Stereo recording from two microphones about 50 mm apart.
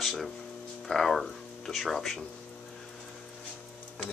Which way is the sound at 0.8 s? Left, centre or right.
Centre.